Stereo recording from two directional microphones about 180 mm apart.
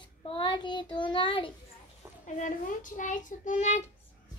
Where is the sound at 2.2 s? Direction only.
45° left (ahead or behind).